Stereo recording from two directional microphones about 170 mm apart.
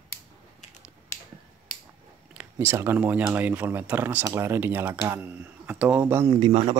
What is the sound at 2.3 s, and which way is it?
Speech, 15° right (ahead or behind).